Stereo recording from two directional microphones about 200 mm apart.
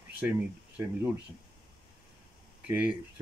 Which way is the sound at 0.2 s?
10° right (ahead or behind).